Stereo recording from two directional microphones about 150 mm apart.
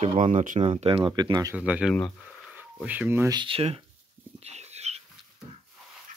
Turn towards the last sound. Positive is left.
turn(degrees=-45)  # may be behind; listen again after turning